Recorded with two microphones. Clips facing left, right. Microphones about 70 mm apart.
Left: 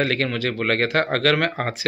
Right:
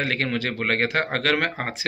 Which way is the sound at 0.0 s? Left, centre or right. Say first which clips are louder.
Left 3 dB; centre.